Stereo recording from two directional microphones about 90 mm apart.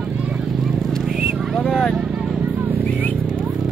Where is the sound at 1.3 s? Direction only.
5° right (ahead or behind).